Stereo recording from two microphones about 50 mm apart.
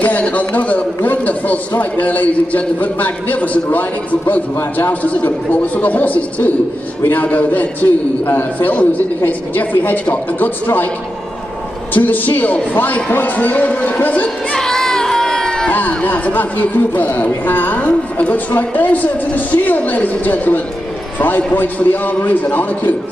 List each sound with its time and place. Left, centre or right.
0.0 s a woman's voice: left
11.9 s a woman's voice: left
14.5 s a sound: centre
16.1 s a woman's voice: left